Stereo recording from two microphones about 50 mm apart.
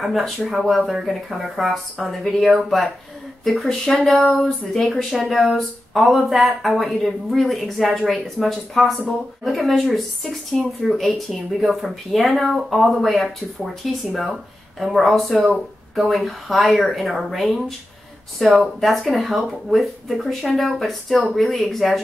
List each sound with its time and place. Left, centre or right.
0.0 s speech: centre